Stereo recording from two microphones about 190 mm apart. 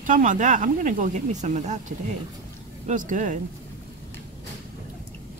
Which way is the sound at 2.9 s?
40° right (ahead or behind).